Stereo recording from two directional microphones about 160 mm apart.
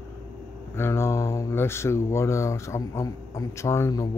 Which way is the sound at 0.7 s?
15° left (ahead or behind).